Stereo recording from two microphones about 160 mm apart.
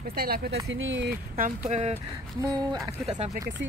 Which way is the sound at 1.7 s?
40° right (ahead or behind).